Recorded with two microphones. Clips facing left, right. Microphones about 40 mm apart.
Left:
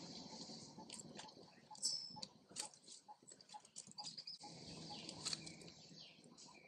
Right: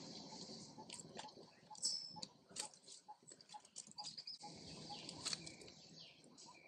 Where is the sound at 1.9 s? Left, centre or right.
Centre.